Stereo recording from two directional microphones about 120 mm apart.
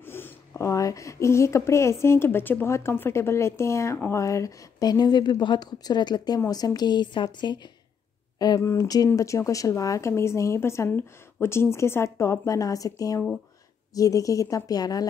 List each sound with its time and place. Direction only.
0.0 s speech: 20° left (ahead or behind)